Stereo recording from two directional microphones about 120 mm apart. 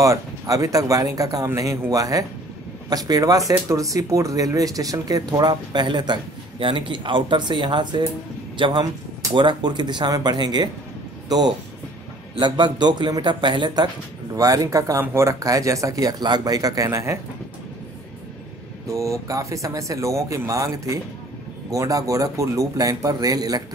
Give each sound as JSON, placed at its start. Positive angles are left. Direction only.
{"t": 0.0, "sound": "a man's voice", "side_deg": -25}
{"t": 18.9, "sound": "speech", "side_deg": -25}